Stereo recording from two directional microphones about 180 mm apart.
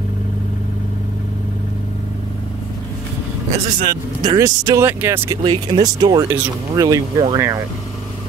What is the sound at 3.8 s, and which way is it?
Speech, 20° right (ahead or behind).